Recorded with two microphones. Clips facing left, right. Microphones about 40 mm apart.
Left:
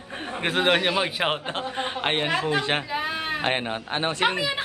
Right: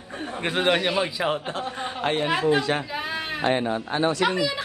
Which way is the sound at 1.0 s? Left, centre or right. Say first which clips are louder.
Even; left.